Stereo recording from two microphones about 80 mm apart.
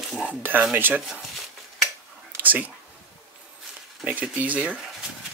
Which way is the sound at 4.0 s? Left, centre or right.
Centre.